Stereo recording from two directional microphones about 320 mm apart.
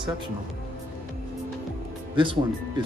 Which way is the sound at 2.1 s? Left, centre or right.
Centre.